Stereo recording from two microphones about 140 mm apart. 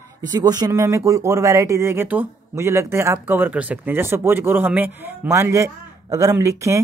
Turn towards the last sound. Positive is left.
turn(degrees=-20)  # may be behind; listen again after turning